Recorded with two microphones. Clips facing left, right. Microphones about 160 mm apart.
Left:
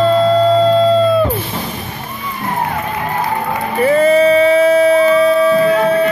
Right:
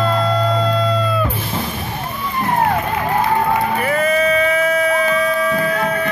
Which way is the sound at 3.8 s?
30° left (ahead or behind).